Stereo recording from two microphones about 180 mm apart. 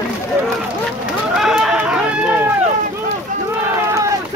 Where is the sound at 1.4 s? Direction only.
5° right (ahead or behind).